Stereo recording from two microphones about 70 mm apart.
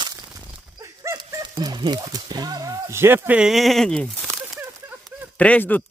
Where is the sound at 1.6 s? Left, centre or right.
Right.